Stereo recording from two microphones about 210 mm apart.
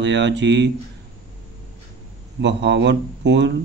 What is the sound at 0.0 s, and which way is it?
Speech, 55° right (ahead or behind).